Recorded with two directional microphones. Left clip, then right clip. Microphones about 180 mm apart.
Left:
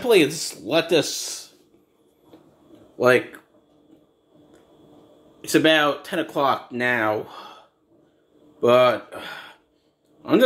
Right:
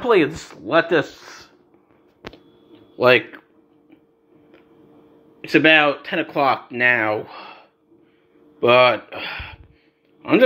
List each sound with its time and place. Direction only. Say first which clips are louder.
0.1 s speech: even; 20° left (ahead or behind)
1.2 s a sound: left 6 dB; 30° left (ahead or behind)
3.0 s speech: right 3 dB; centre (ahead or behind)
5.4 s speech: right 4 dB; centre (ahead or behind)